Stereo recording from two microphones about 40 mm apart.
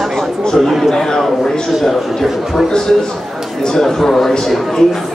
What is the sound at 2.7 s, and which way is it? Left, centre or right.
A man's voice, centre.